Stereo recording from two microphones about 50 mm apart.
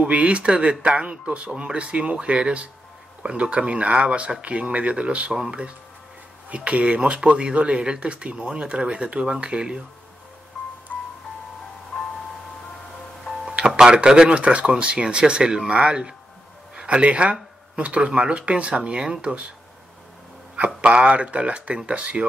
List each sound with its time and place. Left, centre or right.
0.0 s speech: right
10.9 s music: left
13.6 s speech: centre
20.5 s speech: right